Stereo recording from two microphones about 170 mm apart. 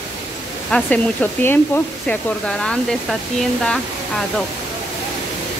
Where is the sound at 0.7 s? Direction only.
10° left (ahead or behind).